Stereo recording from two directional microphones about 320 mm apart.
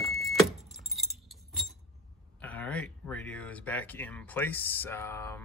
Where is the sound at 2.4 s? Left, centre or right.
Centre.